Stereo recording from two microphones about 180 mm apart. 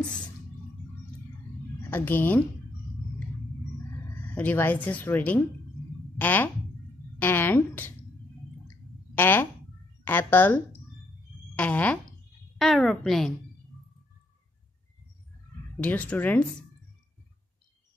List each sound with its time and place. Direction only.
1.9 s speech: 10° left (ahead or behind)
3.9 s a woman's voice: 10° left (ahead or behind)
9.1 s a sound: 10° left (ahead or behind)
15.8 s speech: 10° left (ahead or behind)